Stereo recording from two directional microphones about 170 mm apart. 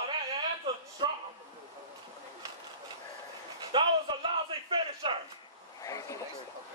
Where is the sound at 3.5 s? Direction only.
30° right (ahead or behind).